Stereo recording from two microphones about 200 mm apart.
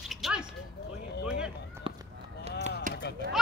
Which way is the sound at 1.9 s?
25° right (ahead or behind).